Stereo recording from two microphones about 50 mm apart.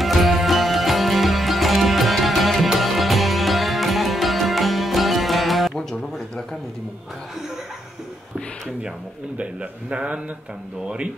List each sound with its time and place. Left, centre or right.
0.0 s music: centre
9.4 s a man's voice: right